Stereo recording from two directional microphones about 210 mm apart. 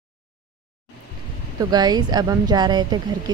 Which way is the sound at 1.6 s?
20° right (ahead or behind).